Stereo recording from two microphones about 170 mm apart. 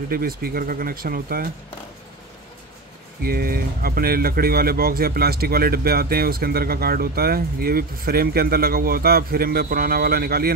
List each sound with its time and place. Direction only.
0.1 s speech: 60° right (ahead or behind)
3.2 s speech: 60° right (ahead or behind)